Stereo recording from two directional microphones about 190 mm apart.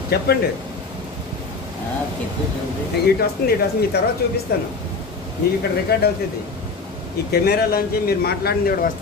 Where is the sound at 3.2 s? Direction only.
55° left (ahead or behind).